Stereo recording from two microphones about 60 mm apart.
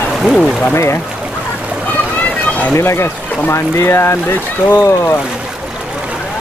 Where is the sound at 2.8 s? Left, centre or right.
Left.